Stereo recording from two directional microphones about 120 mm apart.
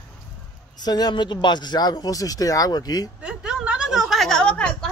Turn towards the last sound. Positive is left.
turn(degrees=10)  # may be behind; listen again after turning